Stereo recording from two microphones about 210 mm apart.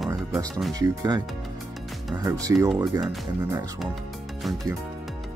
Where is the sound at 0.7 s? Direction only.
15° right (ahead or behind).